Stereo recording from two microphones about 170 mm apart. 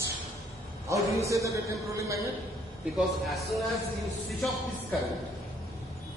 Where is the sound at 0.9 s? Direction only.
15° right (ahead or behind).